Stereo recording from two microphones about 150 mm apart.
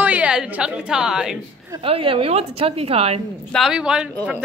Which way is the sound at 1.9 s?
40° right (ahead or behind).